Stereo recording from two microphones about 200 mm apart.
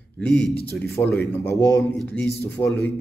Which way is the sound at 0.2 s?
5° left (ahead or behind).